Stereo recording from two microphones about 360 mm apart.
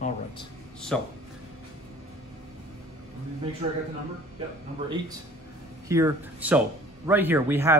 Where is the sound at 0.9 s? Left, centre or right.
Centre.